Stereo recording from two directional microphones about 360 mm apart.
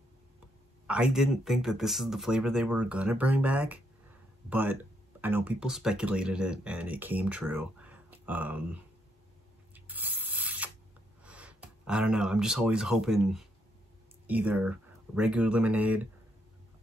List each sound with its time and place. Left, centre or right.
0.8 s speech: centre
9.8 s a sound: centre
11.2 s speech: centre